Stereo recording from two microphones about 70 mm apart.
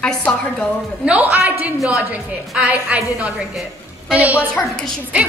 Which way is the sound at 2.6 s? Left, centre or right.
Right.